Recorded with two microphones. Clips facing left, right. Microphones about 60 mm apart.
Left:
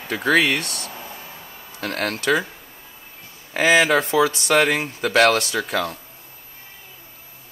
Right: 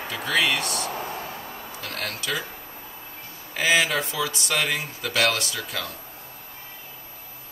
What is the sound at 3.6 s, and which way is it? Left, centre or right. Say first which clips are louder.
Speech: left 6 dB; left.